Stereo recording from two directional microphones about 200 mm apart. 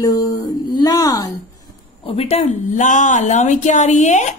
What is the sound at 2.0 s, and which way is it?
A woman's voice, 30° left (ahead or behind).